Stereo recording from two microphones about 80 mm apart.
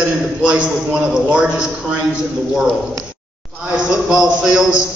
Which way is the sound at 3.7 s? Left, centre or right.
Centre.